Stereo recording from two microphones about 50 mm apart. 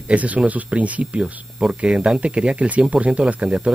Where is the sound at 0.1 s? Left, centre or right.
Right.